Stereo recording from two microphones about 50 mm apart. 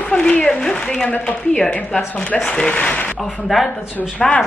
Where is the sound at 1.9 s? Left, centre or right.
Centre.